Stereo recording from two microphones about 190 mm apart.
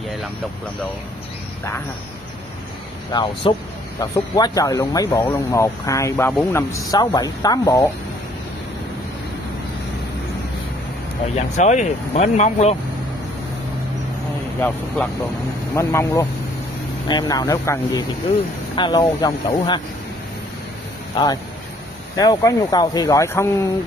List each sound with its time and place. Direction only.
3.1 s speech: 20° left (ahead or behind)
11.3 s speech: 40° left (ahead or behind)
15.7 s speech: 15° left (ahead or behind)
22.1 s speech: 20° left (ahead or behind)